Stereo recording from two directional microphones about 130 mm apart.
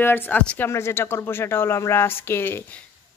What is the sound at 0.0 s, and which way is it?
Speech, 15° left (ahead or behind).